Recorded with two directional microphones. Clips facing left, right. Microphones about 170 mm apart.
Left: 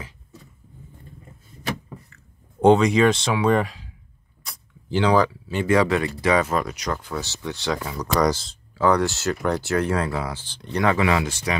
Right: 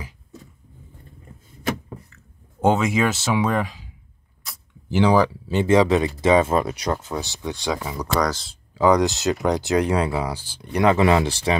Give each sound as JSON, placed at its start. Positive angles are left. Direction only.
{"t": 2.1, "sound": "a sound", "side_deg": 0}
{"t": 3.4, "sound": "speech", "side_deg": 0}
{"t": 8.1, "sound": "speech", "side_deg": 10}
{"t": 8.5, "sound": "speech", "side_deg": -15}
{"t": 11.0, "sound": "speech", "side_deg": -30}